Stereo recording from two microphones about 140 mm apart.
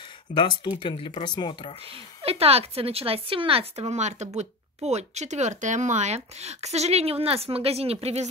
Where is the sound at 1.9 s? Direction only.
45° right (ahead or behind).